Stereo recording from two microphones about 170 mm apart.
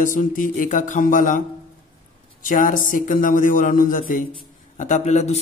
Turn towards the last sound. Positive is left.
turn(degrees=40)  # may be behind; listen again after turning